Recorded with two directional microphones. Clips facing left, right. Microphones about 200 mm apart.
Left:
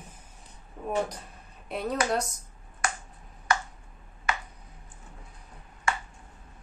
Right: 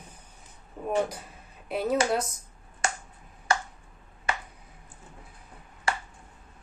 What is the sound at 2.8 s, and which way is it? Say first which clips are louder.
Finger snapping: right 1 dB; 25° right (ahead or behind).